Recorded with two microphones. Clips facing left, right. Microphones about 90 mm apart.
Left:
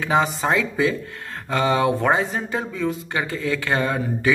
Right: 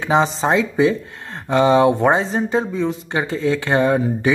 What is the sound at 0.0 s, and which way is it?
Speech, 25° right (ahead or behind).